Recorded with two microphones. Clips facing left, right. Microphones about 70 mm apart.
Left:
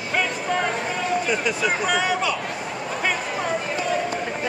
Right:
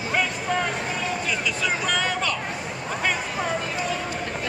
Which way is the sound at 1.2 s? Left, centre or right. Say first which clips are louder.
Left 3 dB; left.